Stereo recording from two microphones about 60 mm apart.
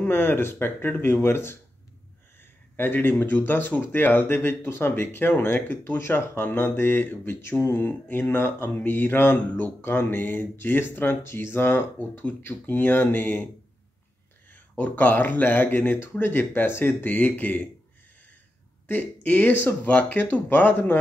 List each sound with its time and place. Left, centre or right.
0.1 s speech: left
2.7 s speech: left
12.0 s speech: left
14.5 s speech: left
18.9 s speech: left